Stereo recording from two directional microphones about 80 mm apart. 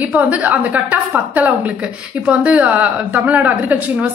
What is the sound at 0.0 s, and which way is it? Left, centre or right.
A woman's voice, centre.